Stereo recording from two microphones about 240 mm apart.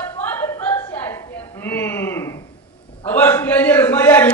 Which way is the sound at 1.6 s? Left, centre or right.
Centre.